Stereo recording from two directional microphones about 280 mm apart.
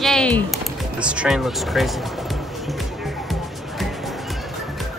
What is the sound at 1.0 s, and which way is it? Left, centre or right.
Speech, centre.